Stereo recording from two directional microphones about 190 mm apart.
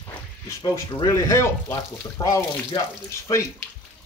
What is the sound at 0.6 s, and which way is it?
Speech, 20° left (ahead or behind).